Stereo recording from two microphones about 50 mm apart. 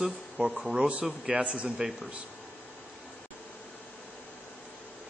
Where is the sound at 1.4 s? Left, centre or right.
Right.